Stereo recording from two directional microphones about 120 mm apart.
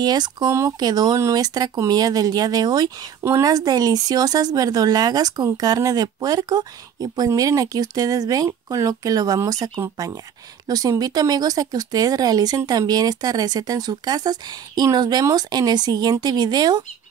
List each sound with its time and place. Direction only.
0.0 s speech: 35° right (ahead or behind)
3.2 s speech: 20° right (ahead or behind)